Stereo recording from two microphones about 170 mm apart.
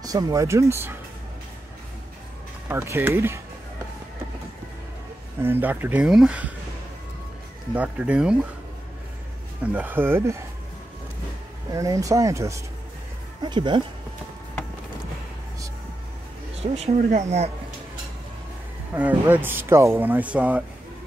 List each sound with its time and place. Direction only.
0.0 s speech: 20° right (ahead or behind)
2.7 s speech: 15° right (ahead or behind)
5.4 s speech: 10° right (ahead or behind)
7.7 s speech: 5° right (ahead or behind)
9.6 s speech: 10° right (ahead or behind)
11.7 s speech: 20° right (ahead or behind)
16.7 s speech: 40° right (ahead or behind)
18.9 s speech: 10° right (ahead or behind)